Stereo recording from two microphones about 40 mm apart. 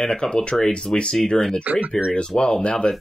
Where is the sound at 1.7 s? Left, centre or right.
Right.